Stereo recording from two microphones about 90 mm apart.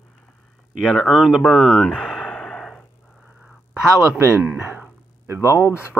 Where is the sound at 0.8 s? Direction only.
5° left (ahead or behind).